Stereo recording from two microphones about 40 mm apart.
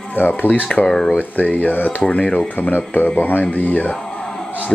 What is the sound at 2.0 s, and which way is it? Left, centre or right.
Speech, left.